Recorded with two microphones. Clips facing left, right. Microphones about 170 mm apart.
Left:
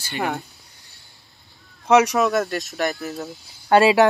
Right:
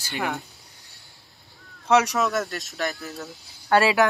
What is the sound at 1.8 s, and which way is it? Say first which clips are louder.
Speech: left 4 dB; 15° left (ahead or behind).